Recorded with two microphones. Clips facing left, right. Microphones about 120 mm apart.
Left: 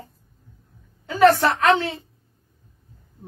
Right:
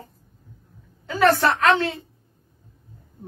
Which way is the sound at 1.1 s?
25° left (ahead or behind).